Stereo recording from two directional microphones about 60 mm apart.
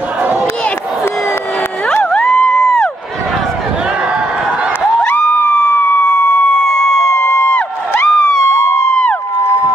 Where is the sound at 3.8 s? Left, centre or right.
Centre.